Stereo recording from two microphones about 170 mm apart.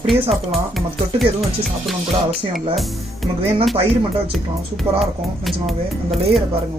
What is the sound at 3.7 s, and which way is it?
Speech, 35° right (ahead or behind).